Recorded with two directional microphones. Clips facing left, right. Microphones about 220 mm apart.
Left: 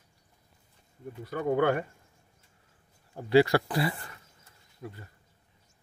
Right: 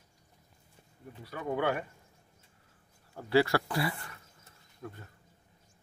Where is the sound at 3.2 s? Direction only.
15° left (ahead or behind).